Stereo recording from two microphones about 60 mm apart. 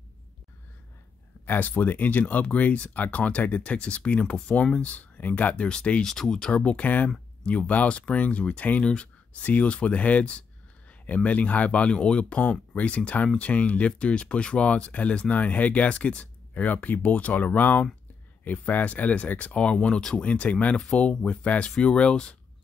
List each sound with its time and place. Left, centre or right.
1.4 s speech: left; by 6.5 s centre
6.5 s speech: left